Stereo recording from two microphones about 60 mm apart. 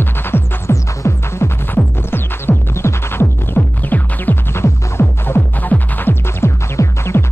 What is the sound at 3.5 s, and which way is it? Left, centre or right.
Music, left.